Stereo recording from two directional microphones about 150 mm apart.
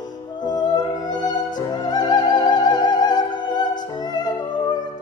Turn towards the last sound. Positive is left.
turn(degrees=30)  # may be behind; listen again after turning